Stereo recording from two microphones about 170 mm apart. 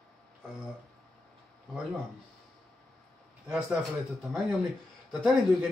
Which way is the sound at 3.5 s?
5° right (ahead or behind).